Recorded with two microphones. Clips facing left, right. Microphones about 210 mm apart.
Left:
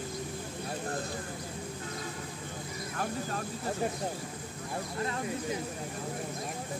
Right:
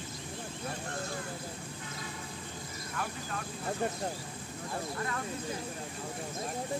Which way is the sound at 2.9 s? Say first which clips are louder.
Left 4 dB; 40° left (ahead or behind).